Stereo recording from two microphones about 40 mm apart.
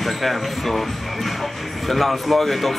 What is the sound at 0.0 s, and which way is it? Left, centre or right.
Speech, centre.